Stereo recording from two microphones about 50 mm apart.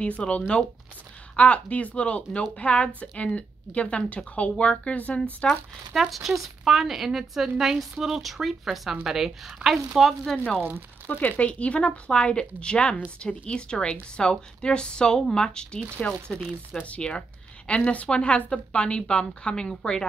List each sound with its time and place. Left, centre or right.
0.0 s speech: left
5.9 s speech: centre
10.3 s speech: centre
11.1 s a woman's voice: left; by 15.8 s centre
16.3 s speech: centre
16.8 s a woman's voice: left